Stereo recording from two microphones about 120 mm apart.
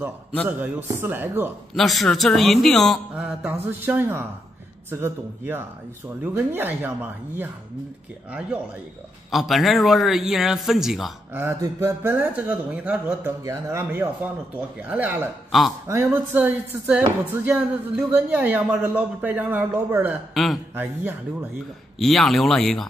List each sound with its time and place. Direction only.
0.5 s speech: 15° right (ahead or behind)
1.8 s a man's voice: centre (ahead or behind)
3.2 s a man's voice: 10° right (ahead or behind)
11.3 s speech: 20° right (ahead or behind)
13.4 s speech: 25° right (ahead or behind)
15.5 s a man's voice: centre (ahead or behind)
15.9 s speech: 20° right (ahead or behind)
21.9 s a man's voice: centre (ahead or behind)